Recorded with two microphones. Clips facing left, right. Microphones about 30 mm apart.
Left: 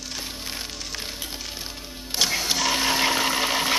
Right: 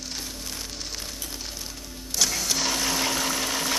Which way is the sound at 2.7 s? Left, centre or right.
Left.